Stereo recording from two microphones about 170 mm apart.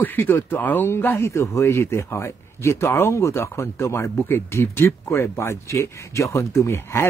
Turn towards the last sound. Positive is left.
turn(degrees=15)  # may be behind; listen again after turning